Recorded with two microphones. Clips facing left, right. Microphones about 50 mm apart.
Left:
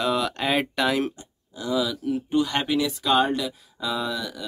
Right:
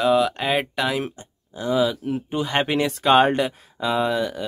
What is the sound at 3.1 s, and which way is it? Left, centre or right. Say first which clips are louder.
Speech: right 6 dB; right.